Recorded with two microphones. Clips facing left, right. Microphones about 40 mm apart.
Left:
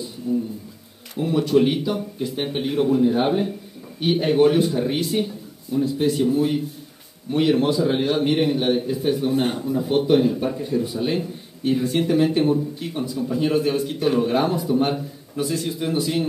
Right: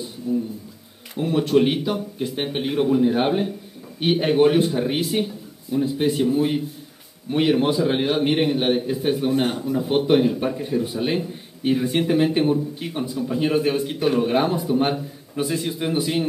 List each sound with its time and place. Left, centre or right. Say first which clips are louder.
0.3 s a man's voice: even; centre
1.2 s speech: even; right
1.5 s a man's voice: even; centre